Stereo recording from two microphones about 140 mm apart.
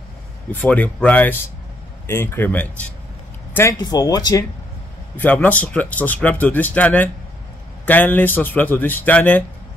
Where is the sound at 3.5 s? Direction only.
15° left (ahead or behind).